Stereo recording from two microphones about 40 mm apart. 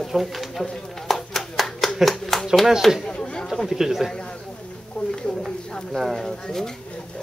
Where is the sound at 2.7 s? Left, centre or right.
Centre.